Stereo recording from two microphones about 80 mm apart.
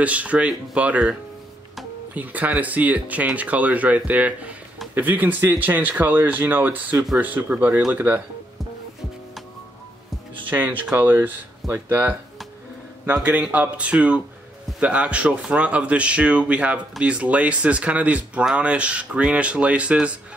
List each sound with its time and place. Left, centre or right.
0.0 s speech: centre
2.1 s speech: right
10.5 s speech: right